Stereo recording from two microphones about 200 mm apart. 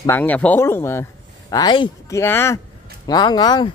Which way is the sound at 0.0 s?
10° left (ahead or behind).